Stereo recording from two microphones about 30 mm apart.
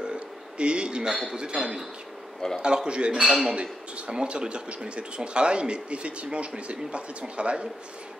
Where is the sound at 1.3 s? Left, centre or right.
Right.